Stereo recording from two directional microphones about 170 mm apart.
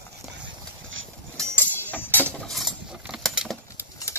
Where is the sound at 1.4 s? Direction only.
10° left (ahead or behind).